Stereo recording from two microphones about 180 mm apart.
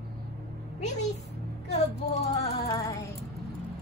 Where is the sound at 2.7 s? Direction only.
20° left (ahead or behind).